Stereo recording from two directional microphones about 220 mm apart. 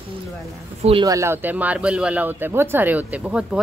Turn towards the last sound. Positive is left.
turn(degrees=-5)  # may be behind; listen again after turning